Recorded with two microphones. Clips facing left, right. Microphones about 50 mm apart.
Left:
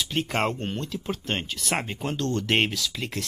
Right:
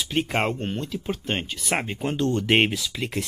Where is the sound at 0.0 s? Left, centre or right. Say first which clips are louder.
Right 2 dB; centre.